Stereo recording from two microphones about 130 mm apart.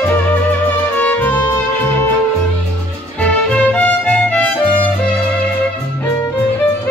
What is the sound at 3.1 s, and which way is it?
Music, 10° left (ahead or behind).